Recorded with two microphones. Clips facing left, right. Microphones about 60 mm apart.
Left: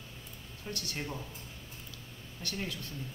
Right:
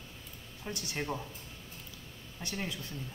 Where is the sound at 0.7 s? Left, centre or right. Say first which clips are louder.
Right 3 dB; right.